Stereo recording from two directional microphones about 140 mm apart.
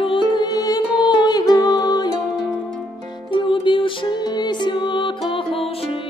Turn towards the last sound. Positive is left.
turn(degrees=45)  # may be behind; listen again after turning